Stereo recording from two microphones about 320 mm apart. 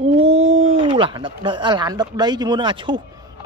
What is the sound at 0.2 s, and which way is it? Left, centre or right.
Speech, centre.